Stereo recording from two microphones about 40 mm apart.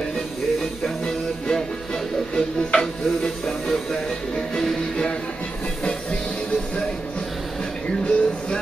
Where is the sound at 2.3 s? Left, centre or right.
Centre.